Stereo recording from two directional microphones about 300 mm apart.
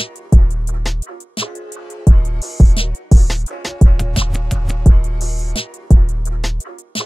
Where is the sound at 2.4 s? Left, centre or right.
Centre.